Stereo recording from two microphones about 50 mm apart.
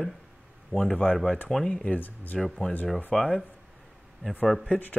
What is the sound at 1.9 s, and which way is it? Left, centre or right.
Speech, left.